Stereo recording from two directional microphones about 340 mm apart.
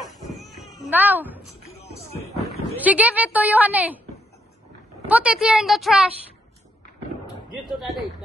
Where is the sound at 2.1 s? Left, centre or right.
Centre.